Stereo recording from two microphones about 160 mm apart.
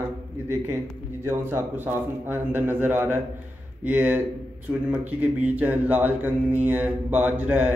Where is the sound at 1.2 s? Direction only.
15° right (ahead or behind).